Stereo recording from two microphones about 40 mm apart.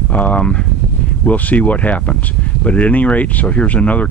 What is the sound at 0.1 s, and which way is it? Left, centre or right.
Speech, left.